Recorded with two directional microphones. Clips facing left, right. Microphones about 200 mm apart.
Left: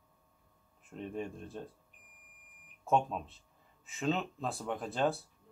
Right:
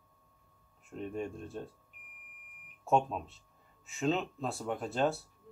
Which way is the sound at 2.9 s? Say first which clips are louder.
Right 1 dB; centre (ahead or behind).